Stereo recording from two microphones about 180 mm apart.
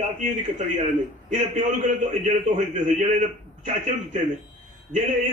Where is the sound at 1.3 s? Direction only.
40° right (ahead or behind).